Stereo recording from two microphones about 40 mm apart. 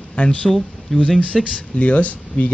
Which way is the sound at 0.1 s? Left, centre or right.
Left.